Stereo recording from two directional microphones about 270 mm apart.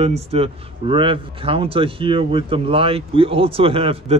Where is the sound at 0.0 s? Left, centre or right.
Right.